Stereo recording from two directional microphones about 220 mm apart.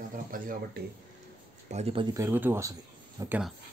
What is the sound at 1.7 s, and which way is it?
Speech, 30° right (ahead or behind).